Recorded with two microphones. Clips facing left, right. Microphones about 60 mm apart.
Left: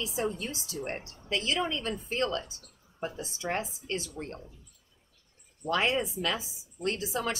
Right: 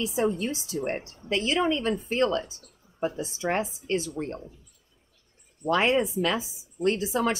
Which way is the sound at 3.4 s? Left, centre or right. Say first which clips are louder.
Right 5 dB; right.